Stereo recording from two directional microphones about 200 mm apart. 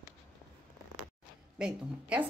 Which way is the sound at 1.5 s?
5° right (ahead or behind).